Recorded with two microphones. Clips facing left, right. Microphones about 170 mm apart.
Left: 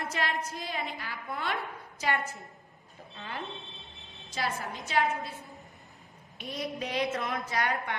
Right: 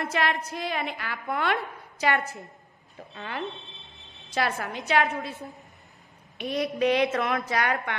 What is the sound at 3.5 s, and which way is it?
Smoke detector, centre (ahead or behind).